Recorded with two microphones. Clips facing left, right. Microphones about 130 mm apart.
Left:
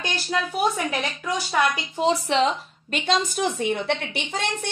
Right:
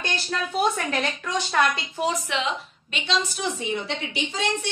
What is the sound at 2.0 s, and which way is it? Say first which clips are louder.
A woman's voice: left 8 dB; 30° left (ahead or behind).